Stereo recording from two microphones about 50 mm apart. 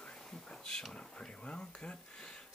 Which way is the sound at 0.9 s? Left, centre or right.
Centre.